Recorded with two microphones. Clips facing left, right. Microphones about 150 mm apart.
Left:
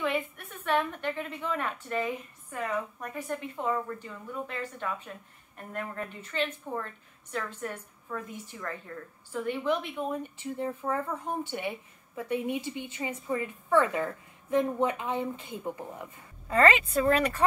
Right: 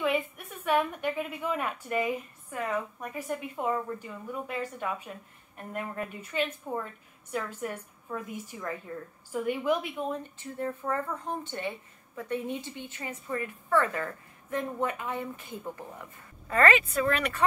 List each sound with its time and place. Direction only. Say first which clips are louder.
0.0 s a woman's voice: right 2 dB; 5° right (ahead or behind)
10.1 s a woman's voice: left 3 dB; 15° left (ahead or behind)
16.5 s speech: left 1 dB; 30° left (ahead or behind)